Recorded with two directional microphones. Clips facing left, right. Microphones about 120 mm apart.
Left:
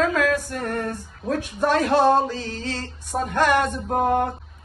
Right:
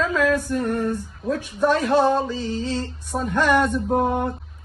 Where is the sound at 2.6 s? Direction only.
65° left (ahead or behind).